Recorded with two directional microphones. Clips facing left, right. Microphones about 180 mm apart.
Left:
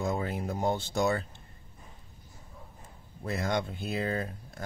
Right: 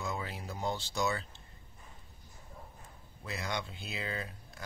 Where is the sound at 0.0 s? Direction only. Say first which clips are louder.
Left 8 dB; 50° left (ahead or behind).